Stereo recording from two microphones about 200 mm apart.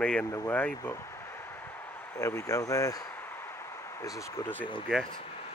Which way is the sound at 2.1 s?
15° left (ahead or behind).